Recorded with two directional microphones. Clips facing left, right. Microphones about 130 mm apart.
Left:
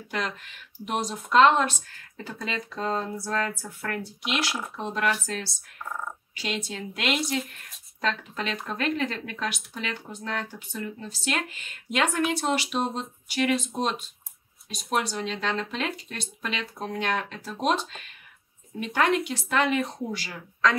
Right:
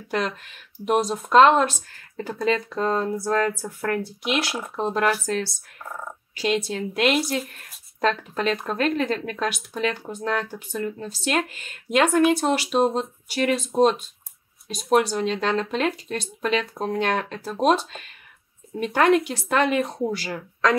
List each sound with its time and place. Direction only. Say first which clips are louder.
0.8 s speech: right 8 dB; 45° right (ahead or behind)
6.4 s speech: right 8 dB; 40° right (ahead or behind)
18.8 s speech: right 5 dB; 45° right (ahead or behind)